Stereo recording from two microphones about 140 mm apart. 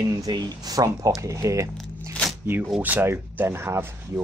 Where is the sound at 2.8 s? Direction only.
15° right (ahead or behind).